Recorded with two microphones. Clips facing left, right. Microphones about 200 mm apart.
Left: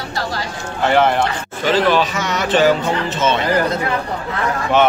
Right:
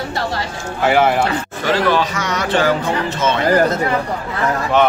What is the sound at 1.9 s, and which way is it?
Speech, 25° left (ahead or behind).